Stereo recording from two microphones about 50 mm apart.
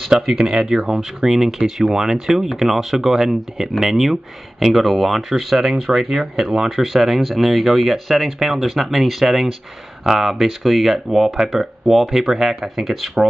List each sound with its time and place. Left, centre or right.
0.1 s speech: centre